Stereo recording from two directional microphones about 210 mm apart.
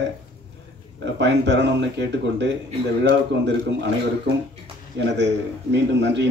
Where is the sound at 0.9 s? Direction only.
55° right (ahead or behind).